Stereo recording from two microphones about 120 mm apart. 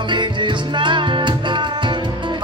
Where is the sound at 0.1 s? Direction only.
40° right (ahead or behind).